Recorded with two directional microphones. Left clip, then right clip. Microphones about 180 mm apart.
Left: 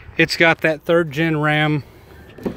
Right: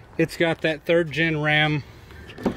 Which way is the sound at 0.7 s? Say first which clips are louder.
Left 3 dB; 40° left (ahead or behind).